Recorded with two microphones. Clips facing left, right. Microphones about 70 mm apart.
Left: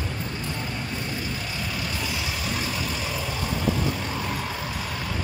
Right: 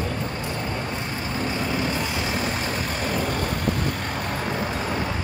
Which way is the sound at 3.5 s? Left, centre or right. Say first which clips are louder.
Even; right.